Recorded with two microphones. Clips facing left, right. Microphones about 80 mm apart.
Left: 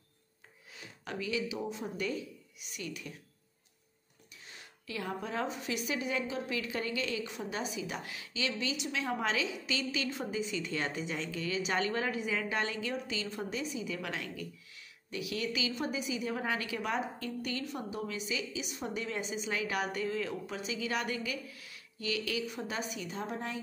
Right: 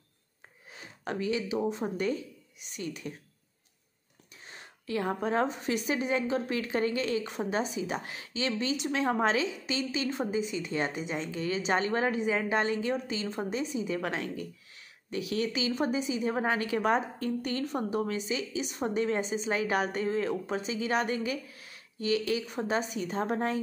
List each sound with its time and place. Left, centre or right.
0.7 s a woman's voice: right
4.5 s a woman's voice: right